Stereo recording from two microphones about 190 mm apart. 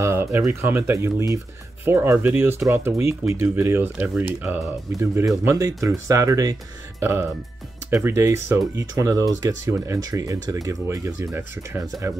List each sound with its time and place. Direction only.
0.0 s speech: 15° right (ahead or behind)